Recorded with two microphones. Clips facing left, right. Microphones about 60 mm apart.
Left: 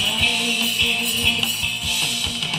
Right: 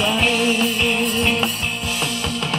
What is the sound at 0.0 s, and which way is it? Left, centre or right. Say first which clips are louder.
Music: right 5 dB; right.